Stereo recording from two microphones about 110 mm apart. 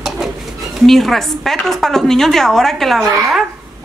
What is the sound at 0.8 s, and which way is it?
A woman's voice, centre (ahead or behind).